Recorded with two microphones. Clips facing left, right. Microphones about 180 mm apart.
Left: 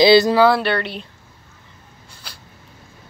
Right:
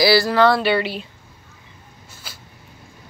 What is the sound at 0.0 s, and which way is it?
Speech, 20° left (ahead or behind).